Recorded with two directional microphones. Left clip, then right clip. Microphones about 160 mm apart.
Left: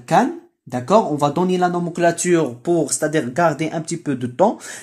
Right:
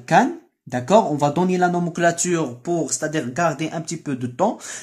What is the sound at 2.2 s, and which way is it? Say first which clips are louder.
Speech: left 5 dB; 20° left (ahead or behind).